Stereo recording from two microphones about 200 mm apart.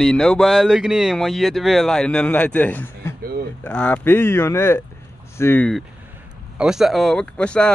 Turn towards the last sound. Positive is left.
turn(degrees=5)  # may be behind; listen again after turning